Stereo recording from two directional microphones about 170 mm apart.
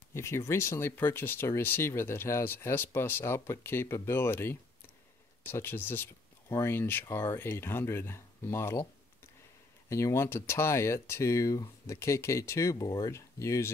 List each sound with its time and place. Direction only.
0.1 s speech: 15° left (ahead or behind)
9.8 s speech: 15° left (ahead or behind)